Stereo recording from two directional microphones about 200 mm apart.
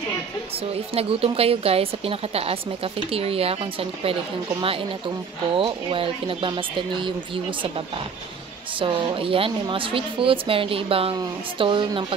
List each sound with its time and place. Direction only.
0.9 s a woman's voice: 30° right (ahead or behind)
8.7 s a woman's voice: 25° right (ahead or behind)